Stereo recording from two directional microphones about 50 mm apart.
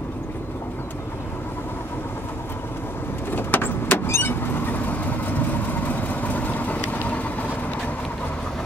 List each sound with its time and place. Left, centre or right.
3.3 s vehicle: left